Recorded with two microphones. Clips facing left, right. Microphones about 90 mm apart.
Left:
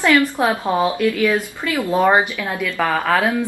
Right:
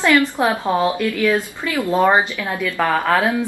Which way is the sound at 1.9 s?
15° left (ahead or behind).